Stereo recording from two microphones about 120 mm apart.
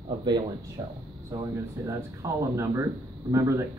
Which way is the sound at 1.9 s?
25° right (ahead or behind).